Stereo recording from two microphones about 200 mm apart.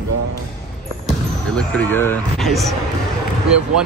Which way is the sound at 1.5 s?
5° left (ahead or behind).